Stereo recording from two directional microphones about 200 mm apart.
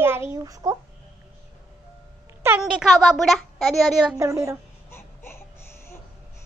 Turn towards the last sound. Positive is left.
turn(degrees=10)  # may be behind; listen again after turning